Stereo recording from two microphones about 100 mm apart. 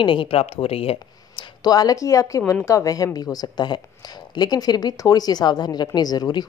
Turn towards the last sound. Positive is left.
turn(degrees=40)  # may be behind; listen again after turning